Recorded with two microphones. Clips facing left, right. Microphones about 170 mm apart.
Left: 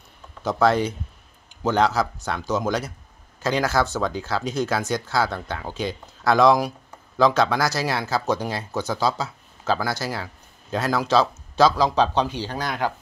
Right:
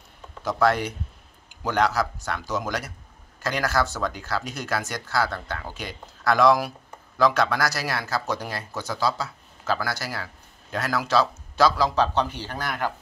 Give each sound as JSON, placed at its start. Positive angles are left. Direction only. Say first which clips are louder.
{"t": 0.4, "sound": "speech", "louder": "left 3 dB", "side_deg": 25}